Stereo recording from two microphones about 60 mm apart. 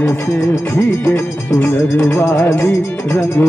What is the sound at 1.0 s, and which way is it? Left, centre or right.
Music, left.